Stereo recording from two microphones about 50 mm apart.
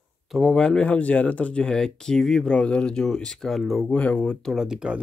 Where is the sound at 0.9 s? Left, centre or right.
Left; by 2.6 s centre.